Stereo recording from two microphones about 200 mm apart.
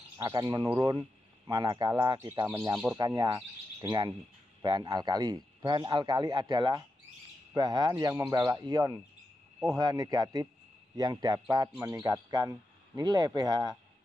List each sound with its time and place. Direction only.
0.2 s a man's voice: 15° right (ahead or behind)
4.6 s a man's voice: 20° right (ahead or behind)